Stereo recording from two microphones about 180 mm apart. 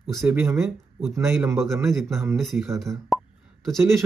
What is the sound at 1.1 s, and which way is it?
Speech, 15° right (ahead or behind).